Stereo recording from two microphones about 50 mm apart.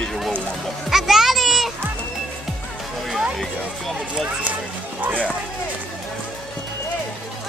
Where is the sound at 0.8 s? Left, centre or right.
Centre.